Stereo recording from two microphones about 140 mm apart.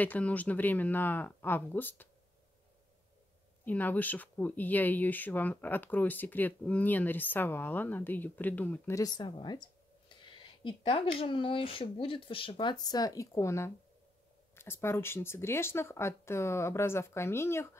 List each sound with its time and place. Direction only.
0.0 s speech: 10° left (ahead or behind)
3.6 s speech: 10° left (ahead or behind)